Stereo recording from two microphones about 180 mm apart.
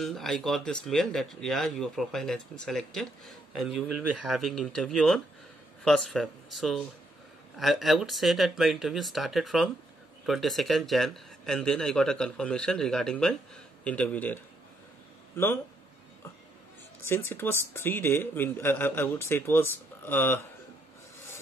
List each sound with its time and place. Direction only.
0.0 s speech: centre (ahead or behind)
17.0 s speech: 15° left (ahead or behind)